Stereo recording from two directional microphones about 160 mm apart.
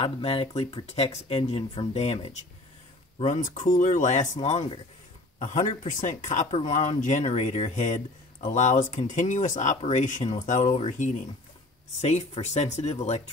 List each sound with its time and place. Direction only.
0.0 s speech: 35° left (ahead or behind)
0.8 s speech: 45° left (ahead or behind)
3.2 s speech: 50° left (ahead or behind)
9.8 s speech: 40° left (ahead or behind)
10.0 s speech: 50° left (ahead or behind)
10.7 s speech: 35° left (ahead or behind)
12.0 s speech: 45° left (ahead or behind)